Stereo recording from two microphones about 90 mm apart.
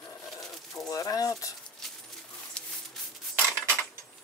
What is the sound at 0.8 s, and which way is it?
Speech, 40° left (ahead or behind).